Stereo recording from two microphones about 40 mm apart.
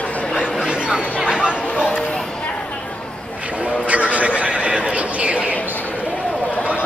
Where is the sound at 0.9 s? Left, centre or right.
Right.